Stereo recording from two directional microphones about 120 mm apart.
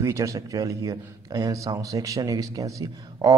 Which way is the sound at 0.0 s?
25° right (ahead or behind).